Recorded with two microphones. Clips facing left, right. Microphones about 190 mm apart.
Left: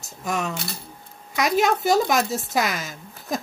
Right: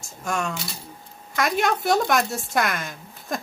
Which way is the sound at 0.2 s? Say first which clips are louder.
Left 1 dB; 5° left (ahead or behind).